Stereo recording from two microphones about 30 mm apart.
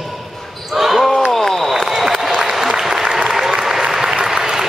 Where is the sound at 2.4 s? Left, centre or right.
Centre.